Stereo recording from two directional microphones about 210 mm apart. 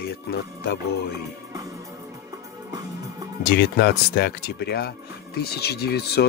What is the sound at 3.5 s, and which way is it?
Speech, 50° left (ahead or behind).